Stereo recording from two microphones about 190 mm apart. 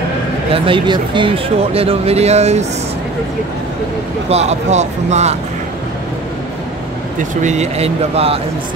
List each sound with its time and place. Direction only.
0.5 s speech: 25° right (ahead or behind)
4.3 s speech: 35° right (ahead or behind)
7.4 s speech: 35° right (ahead or behind)